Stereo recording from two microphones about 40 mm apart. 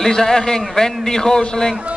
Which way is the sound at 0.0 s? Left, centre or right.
Centre.